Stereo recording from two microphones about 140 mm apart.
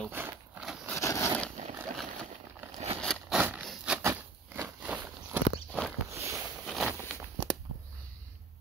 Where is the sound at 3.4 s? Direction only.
10° right (ahead or behind).